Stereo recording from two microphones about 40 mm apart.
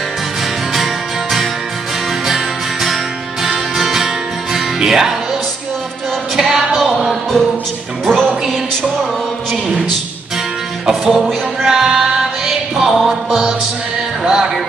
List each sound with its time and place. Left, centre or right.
2.2 s music: centre
6.3 s music: centre
8.0 s speech: centre
10.9 s music: centre